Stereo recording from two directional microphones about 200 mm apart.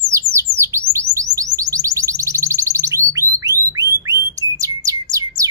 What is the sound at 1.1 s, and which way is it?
Music, 15° right (ahead or behind).